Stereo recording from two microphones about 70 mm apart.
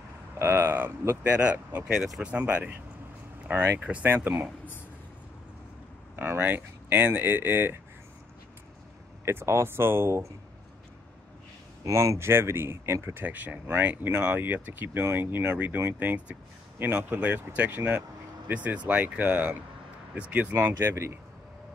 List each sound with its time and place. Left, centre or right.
0.4 s speech: right
2.0 s speech: centre
2.2 s speech: right
6.1 s speech: right
9.2 s speech: right
11.8 s speech: right
13.2 s speech: right